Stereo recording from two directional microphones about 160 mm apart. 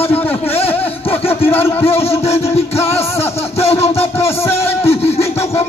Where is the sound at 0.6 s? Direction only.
35° left (ahead or behind).